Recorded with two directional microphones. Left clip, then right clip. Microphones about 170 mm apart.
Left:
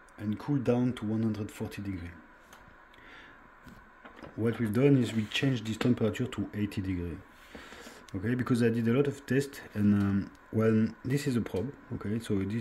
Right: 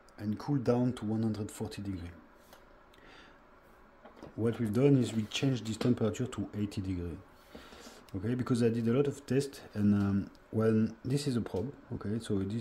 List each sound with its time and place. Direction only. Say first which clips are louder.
0.2 s speech: left 2 dB; 5° right (ahead or behind)
4.2 s speech: left 2 dB; 5° right (ahead or behind)